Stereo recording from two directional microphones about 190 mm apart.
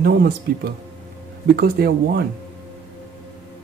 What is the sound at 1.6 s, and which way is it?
Speech, 55° right (ahead or behind).